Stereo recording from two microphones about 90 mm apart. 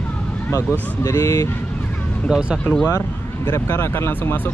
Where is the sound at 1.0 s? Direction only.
35° left (ahead or behind).